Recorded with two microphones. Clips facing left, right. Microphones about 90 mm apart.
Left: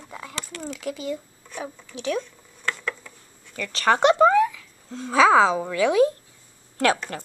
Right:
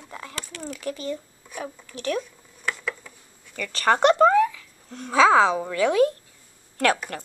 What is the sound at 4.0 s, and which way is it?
Speech, 10° left (ahead or behind).